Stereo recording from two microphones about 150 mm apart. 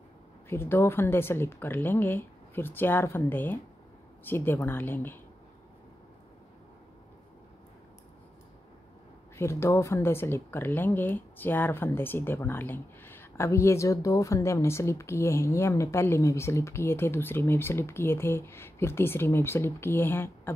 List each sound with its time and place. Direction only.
0.5 s speech: 15° left (ahead or behind)
9.4 s speech: 20° left (ahead or behind)